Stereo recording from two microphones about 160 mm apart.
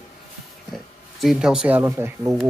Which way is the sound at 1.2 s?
5° right (ahead or behind).